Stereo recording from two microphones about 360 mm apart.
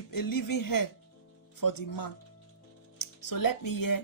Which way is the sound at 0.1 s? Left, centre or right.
Left.